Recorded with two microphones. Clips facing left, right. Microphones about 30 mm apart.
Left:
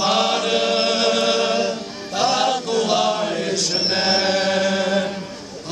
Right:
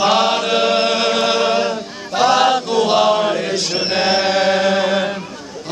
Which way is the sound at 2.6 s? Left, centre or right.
Right.